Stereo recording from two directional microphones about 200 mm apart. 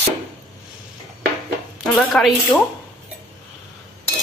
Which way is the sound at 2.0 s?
Centre (ahead or behind).